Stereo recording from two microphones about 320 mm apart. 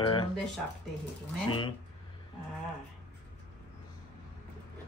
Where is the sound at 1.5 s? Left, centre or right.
Centre.